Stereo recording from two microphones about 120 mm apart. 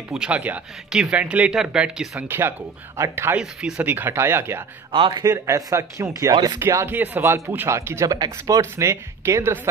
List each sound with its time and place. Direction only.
0.1 s speech: 10° right (ahead or behind)
2.2 s speech: 20° right (ahead or behind)
3.3 s speech: 10° right (ahead or behind)
4.9 s speech: 40° right (ahead or behind)
6.6 s speech: 20° right (ahead or behind)